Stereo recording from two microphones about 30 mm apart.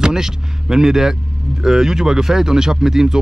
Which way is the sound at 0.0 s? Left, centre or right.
Centre.